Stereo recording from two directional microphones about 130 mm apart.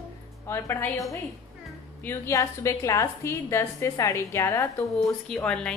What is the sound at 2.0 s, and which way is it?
A woman's voice, 20° left (ahead or behind).